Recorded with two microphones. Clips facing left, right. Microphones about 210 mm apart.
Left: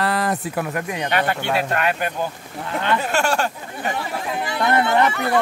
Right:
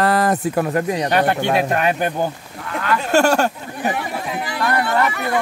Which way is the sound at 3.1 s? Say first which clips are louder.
Right 6 dB; 40° right (ahead or behind).